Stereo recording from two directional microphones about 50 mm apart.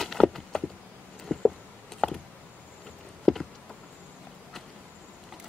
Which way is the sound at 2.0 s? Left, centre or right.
Left.